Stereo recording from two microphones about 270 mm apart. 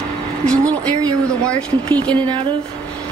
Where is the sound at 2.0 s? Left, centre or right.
Centre.